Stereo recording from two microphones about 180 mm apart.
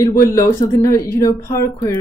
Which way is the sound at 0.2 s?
15° left (ahead or behind).